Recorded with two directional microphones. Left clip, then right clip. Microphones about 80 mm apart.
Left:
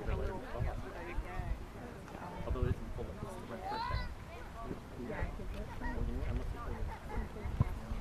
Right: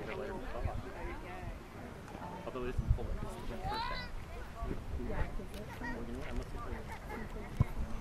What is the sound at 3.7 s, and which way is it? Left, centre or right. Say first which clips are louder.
Speech: right 1 dB; right.